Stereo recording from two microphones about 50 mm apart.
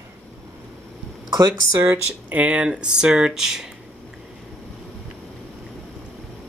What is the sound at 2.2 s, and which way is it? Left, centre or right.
Speech, right.